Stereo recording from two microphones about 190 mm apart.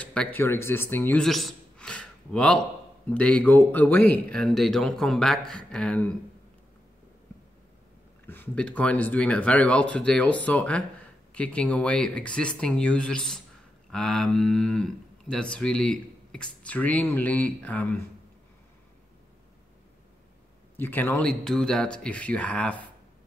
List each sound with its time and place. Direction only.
0.0 s speech: 5° left (ahead or behind)
8.3 s speech: 10° left (ahead or behind)
20.7 s speech: 10° left (ahead or behind)